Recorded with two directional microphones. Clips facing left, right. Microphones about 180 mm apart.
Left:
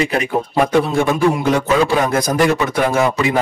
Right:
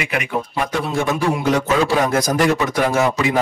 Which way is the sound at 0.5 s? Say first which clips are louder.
Left 8 dB; 60° left (ahead or behind).